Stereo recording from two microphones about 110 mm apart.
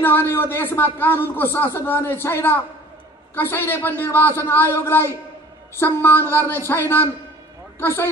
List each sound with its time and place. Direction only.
0.0 s a man's voice: 20° left (ahead or behind)
7.8 s a man's voice: 20° left (ahead or behind)